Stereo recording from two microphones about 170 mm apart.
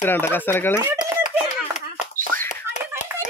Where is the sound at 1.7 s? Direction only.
45° left (ahead or behind).